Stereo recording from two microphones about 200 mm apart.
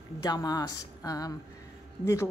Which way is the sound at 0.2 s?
20° left (ahead or behind).